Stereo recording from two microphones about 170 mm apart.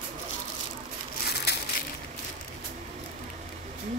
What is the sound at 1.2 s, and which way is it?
Crushing, 75° left (ahead or behind).